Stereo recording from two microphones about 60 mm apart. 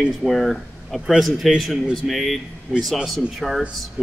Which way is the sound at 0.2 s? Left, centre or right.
Centre.